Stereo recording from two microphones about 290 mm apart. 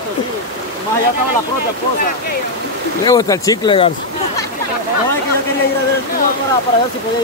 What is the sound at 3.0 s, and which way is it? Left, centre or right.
Speech, centre.